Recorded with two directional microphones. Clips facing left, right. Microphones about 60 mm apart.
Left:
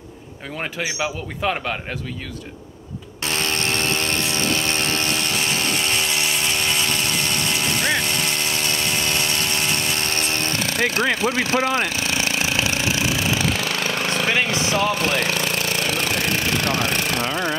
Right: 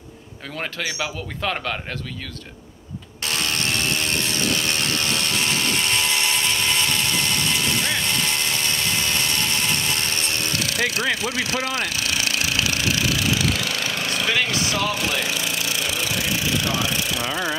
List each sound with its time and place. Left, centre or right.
0.7 s a man's voice: centre
3.3 s chainsaw: left
10.1 s jackhammer: left
15.1 s jackhammer: left
17.3 s speech: centre